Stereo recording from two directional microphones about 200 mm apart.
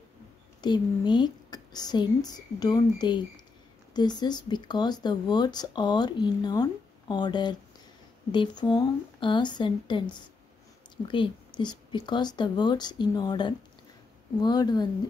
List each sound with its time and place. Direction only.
0.6 s speech: 20° left (ahead or behind)